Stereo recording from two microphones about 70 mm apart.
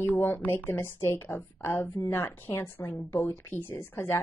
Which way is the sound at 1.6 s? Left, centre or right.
Left.